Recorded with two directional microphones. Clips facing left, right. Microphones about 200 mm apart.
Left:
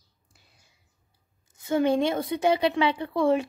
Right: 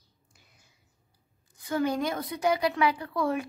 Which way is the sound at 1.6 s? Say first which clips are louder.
Left 5 dB; 25° left (ahead or behind).